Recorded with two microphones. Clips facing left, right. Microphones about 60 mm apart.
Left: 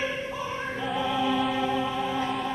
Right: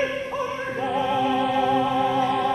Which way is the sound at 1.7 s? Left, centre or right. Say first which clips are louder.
Right 7 dB; right.